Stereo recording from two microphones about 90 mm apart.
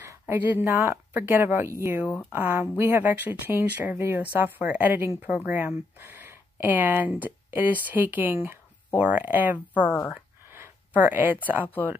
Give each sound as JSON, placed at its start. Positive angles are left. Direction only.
{"t": 0.0, "sound": "speech", "side_deg": -25}
{"t": 2.0, "sound": "speech", "side_deg": 20}
{"t": 2.3, "sound": "speech", "side_deg": -25}
{"t": 10.5, "sound": "a sound", "side_deg": -25}
{"t": 11.4, "sound": "speech", "side_deg": -20}